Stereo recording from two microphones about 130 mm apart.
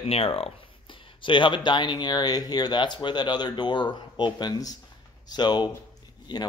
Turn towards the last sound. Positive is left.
turn(degrees=35)  # may be behind; listen again after turning